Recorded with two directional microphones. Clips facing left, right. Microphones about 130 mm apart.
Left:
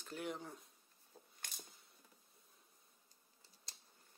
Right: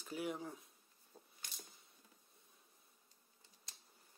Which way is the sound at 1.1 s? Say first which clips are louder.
Even; 5° left (ahead or behind).